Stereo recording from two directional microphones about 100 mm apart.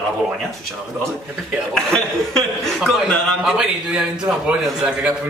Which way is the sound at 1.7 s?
5° left (ahead or behind).